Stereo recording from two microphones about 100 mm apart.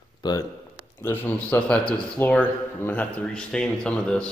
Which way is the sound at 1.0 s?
20° left (ahead or behind).